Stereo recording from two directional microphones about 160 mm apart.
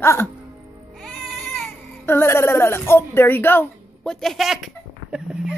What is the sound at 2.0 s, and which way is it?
A woman's voice, 15° left (ahead or behind).